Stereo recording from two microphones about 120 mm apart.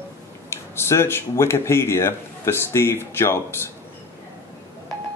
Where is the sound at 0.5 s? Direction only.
20° left (ahead or behind).